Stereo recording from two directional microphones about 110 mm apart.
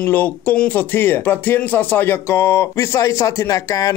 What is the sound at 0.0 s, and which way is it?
Speech, 15° left (ahead or behind).